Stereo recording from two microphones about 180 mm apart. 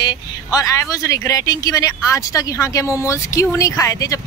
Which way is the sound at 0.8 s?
20° left (ahead or behind).